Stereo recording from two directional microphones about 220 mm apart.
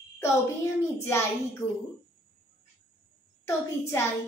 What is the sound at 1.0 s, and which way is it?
Speech, 10° left (ahead or behind).